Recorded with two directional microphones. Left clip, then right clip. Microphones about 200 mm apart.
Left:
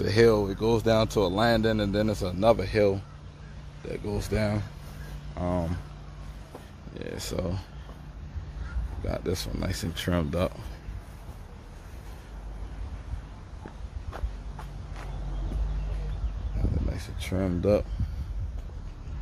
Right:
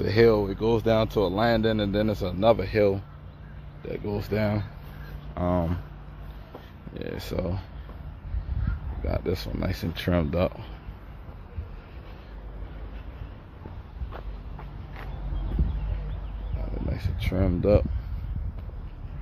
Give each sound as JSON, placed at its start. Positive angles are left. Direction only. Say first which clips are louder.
{"t": 0.0, "sound": "speech", "louder": "right 1 dB", "side_deg": 0}
{"t": 5.3, "sound": "speech", "louder": "right 4 dB", "side_deg": -20}
{"t": 6.9, "sound": "speech", "louder": "right 1 dB", "side_deg": -15}
{"t": 9.0, "sound": "speech", "louder": "right 2 dB", "side_deg": -5}
{"t": 16.9, "sound": "a sound", "louder": "right 2 dB", "side_deg": -5}